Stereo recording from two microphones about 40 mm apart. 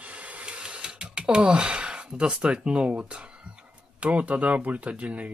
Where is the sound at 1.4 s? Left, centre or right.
Centre.